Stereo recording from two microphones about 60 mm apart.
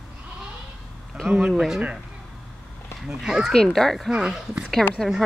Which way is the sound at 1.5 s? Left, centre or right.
Centre.